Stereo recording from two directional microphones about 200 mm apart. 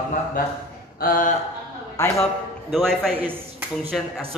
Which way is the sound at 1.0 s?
45° left (ahead or behind).